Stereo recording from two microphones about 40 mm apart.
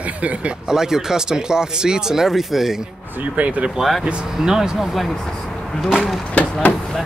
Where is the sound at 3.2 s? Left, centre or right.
Right.